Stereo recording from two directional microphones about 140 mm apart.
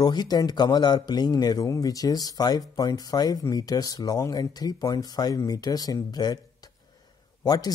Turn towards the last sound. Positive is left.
turn(degrees=30)  # may be behind; listen again after turning